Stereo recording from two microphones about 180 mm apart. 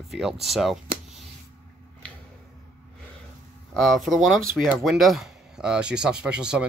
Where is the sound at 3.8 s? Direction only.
Centre (ahead or behind).